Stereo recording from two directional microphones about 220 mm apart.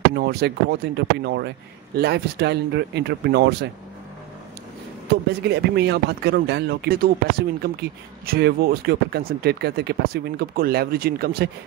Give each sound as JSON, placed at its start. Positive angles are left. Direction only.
{"t": 0.1, "sound": "speech", "side_deg": -45}
{"t": 5.4, "sound": "speech", "side_deg": -50}